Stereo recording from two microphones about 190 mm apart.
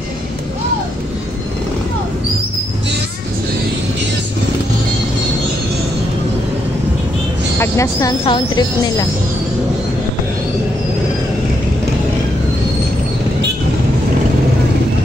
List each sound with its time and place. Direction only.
7.5 s speech: 15° left (ahead or behind)